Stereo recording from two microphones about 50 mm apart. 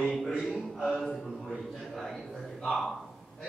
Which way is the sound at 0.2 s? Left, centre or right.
Centre.